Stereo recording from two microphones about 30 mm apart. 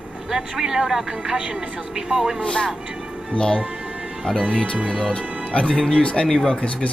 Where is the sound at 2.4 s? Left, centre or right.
Left.